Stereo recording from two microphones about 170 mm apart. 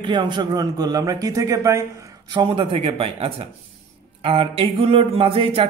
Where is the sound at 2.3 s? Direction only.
30° right (ahead or behind).